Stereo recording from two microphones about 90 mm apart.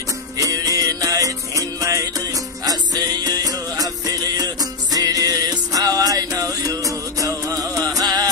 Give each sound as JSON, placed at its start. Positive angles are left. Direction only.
{"t": 0.4, "sound": "music", "side_deg": -40}